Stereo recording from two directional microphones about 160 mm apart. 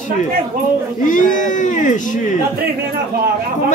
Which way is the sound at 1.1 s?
50° left (ahead or behind).